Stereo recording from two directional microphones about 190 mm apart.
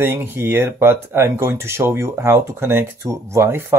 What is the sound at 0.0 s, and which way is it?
Speech, 10° right (ahead or behind).